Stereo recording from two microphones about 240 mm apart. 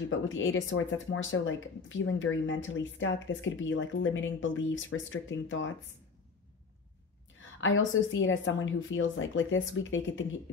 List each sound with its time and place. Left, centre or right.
0.1 s speech: left
7.6 s speech: left